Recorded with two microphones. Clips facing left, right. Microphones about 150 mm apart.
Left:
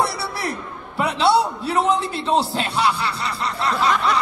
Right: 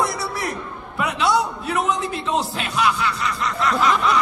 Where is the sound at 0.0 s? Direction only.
30° left (ahead or behind).